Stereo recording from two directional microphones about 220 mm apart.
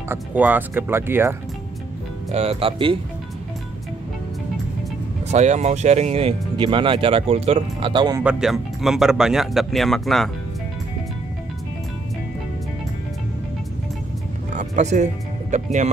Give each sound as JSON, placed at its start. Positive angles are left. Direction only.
{"t": 0.1, "sound": "speech", "side_deg": -10}
{"t": 2.3, "sound": "speech", "side_deg": -25}
{"t": 5.3, "sound": "speech", "side_deg": -30}
{"t": 8.2, "sound": "speech", "side_deg": -5}
{"t": 14.6, "sound": "music", "side_deg": -30}
{"t": 15.5, "sound": "speech", "side_deg": -30}